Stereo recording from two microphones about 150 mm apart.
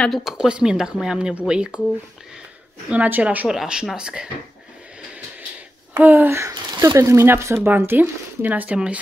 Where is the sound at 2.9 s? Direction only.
10° right (ahead or behind).